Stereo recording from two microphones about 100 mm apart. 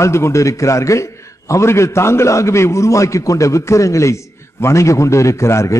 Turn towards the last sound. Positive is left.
turn(degrees=30)  # may be behind; listen again after turning